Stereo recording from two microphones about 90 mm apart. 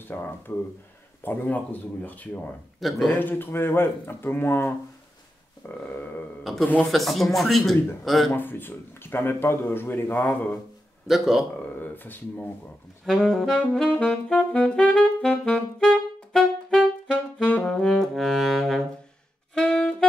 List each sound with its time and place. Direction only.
0.0 s a man's voice: 25° left (ahead or behind)
2.8 s speech: centre (ahead or behind)
3.1 s a man's voice: 20° left (ahead or behind)
6.9 s speech: centre (ahead or behind)
8.3 s a man's voice: 20° left (ahead or behind)
11.1 s speech: 5° right (ahead or behind)
11.8 s a man's voice: 20° left (ahead or behind)
13.0 s speech: 5° left (ahead or behind)
13.6 s saxophone: 10° left (ahead or behind)
17.6 s brass instrument: 5° left (ahead or behind)
19.5 s saxophone: 10° left (ahead or behind)